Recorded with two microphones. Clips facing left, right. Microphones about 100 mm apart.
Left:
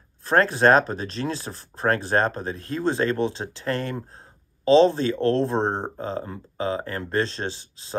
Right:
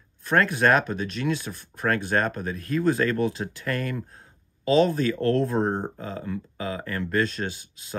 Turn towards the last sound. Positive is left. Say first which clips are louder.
# left 3 dB
turn(degrees=30)  # may be behind; listen again after turning